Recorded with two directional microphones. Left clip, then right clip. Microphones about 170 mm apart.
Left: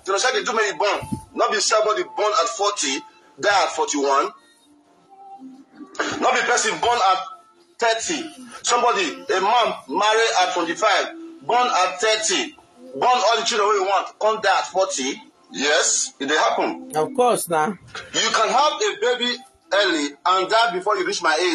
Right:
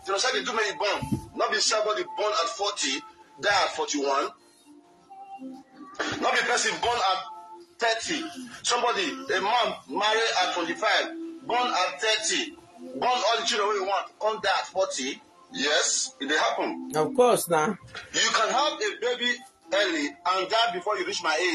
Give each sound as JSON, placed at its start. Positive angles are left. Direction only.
{"t": 0.0, "sound": "speech", "side_deg": 35}
{"t": 5.9, "sound": "speech", "side_deg": 35}
{"t": 16.9, "sound": "speech", "side_deg": 60}
{"t": 17.9, "sound": "speech", "side_deg": 35}